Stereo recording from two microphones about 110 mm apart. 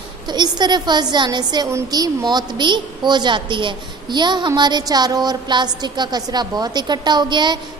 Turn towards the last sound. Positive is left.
turn(degrees=-45)  # may be behind; listen again after turning